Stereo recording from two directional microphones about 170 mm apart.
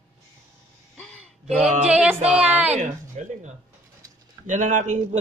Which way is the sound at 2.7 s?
45° right (ahead or behind).